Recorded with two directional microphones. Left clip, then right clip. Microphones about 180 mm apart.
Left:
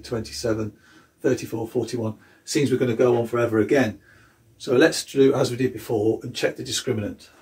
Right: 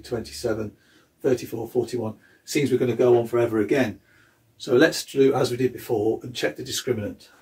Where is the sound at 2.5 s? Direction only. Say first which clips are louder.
Left 1 dB; 20° right (ahead or behind).